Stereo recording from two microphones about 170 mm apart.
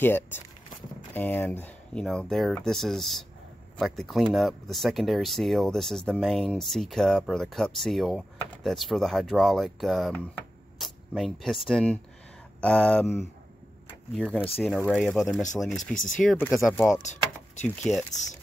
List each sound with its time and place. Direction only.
0.0 s speech: 10° left (ahead or behind)
15.8 s speech: 50° left (ahead or behind)
16.2 s speech: 10° left (ahead or behind)
17.0 s vehicle: 45° left (ahead or behind)
17.9 s speech: centre (ahead or behind)